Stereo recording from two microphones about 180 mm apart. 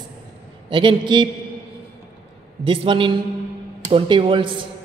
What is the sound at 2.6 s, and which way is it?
A woman's voice, 30° right (ahead or behind).